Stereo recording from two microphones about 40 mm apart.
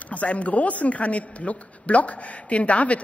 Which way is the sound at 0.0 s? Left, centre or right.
Left.